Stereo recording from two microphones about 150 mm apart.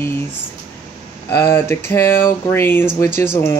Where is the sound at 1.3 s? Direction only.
15° left (ahead or behind).